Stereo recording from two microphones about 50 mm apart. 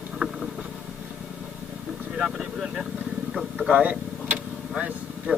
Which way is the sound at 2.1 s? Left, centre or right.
Centre.